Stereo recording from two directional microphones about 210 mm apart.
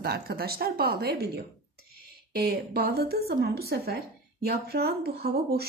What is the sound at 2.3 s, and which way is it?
A woman's voice, 45° right (ahead or behind).